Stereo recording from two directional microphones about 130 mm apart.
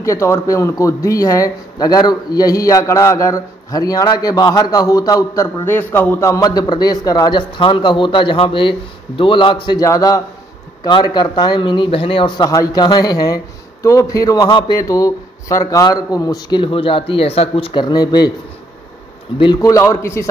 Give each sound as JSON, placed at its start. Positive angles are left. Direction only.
{"t": 0.0, "sound": "speech", "side_deg": 25}
{"t": 9.8, "sound": "a man's voice", "side_deg": 25}
{"t": 19.3, "sound": "a man's voice", "side_deg": 40}
{"t": 19.6, "sound": "speech", "side_deg": 25}